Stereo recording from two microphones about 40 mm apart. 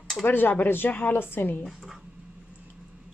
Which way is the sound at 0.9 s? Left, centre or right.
Left.